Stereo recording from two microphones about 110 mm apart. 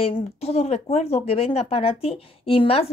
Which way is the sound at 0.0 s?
65° left (ahead or behind).